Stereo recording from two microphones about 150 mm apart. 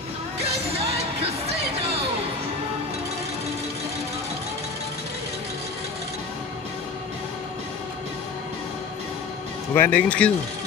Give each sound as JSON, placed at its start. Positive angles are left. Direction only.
{"t": 0.7, "sound": "music", "side_deg": -40}
{"t": 9.8, "sound": "speech", "side_deg": 10}